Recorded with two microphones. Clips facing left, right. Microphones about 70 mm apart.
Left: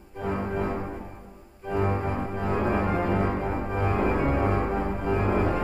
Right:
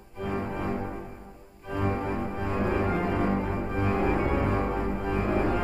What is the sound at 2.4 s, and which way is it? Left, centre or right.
Organ, centre.